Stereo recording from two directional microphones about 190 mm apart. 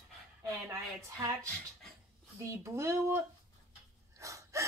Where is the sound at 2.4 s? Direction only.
15° right (ahead or behind).